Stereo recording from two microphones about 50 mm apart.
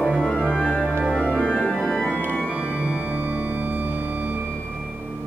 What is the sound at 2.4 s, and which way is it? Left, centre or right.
Music, right.